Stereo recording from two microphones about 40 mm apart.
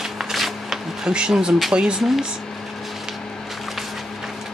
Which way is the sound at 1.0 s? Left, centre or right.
Right.